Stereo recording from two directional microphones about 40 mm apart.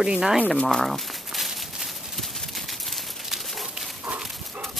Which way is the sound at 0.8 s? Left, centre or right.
Centre.